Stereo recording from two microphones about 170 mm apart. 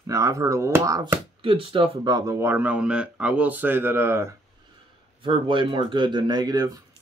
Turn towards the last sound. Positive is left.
turn(degrees=-20)  # may be behind; listen again after turning